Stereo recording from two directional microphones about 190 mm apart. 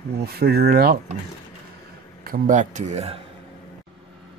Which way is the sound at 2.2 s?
45° right (ahead or behind).